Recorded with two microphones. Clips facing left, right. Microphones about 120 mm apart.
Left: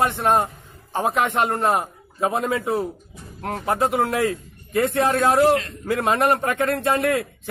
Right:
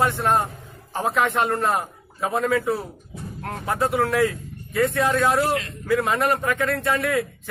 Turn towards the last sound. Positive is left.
turn(degrees=25)  # may be behind; listen again after turning